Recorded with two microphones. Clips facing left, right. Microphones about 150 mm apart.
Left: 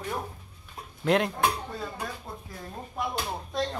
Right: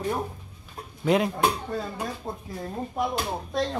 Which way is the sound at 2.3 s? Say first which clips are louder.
Right 6 dB; 40° right (ahead or behind).